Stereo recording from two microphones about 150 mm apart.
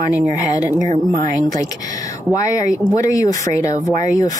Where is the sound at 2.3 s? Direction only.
20° left (ahead or behind).